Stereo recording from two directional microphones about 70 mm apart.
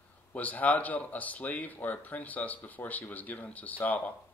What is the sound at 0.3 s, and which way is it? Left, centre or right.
Speech, left.